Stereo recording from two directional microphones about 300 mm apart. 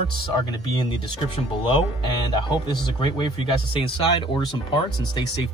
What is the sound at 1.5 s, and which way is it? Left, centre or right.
Speech, centre.